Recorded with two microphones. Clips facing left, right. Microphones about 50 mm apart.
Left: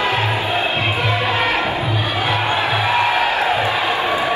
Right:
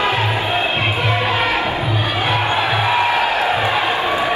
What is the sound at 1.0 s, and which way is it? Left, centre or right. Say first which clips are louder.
Music: right 1 dB; right.